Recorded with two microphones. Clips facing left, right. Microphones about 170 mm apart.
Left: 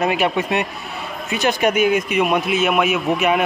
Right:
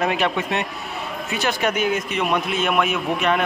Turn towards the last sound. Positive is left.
turn(degrees=5)  # may be behind; listen again after turning